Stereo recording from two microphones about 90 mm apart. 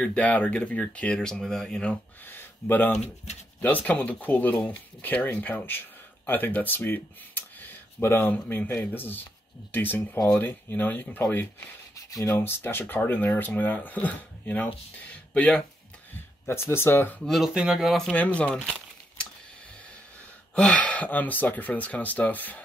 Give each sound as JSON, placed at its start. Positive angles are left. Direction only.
{"t": 0.0, "sound": "speech", "side_deg": 15}
{"t": 2.2, "sound": "speech", "side_deg": 20}
{"t": 10.1, "sound": "speech", "side_deg": 40}
{"t": 10.4, "sound": "speech", "side_deg": 20}
{"t": 11.9, "sound": "a sound", "side_deg": 40}
{"t": 12.4, "sound": "speech", "side_deg": 25}
{"t": 16.4, "sound": "speech", "side_deg": 30}
{"t": 17.2, "sound": "speech", "side_deg": 5}
{"t": 18.1, "sound": "speech", "side_deg": 15}
{"t": 20.5, "sound": "speech", "side_deg": 15}